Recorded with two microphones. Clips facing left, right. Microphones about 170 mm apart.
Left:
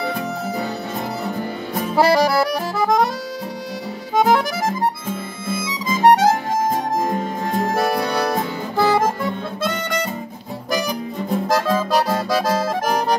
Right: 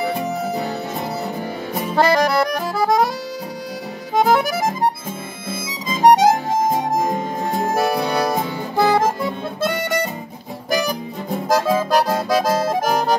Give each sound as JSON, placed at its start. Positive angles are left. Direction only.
{"t": 2.0, "sound": "accordion", "side_deg": 5}
{"t": 4.2, "sound": "music", "side_deg": -5}
{"t": 5.9, "sound": "harmonica", "side_deg": -15}
{"t": 7.7, "sound": "accordion", "side_deg": 0}
{"t": 8.7, "sound": "music", "side_deg": -15}
{"t": 11.4, "sound": "accordion", "side_deg": -5}